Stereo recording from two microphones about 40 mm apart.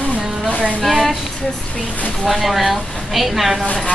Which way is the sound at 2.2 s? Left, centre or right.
Centre.